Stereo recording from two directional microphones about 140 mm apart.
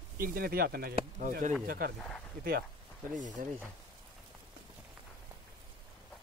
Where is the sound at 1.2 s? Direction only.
65° right (ahead or behind).